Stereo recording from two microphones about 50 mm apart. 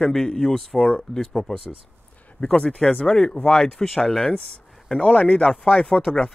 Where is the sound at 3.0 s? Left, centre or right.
Centre.